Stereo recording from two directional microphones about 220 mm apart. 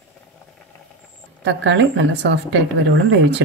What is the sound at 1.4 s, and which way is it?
A woman's voice, 55° right (ahead or behind).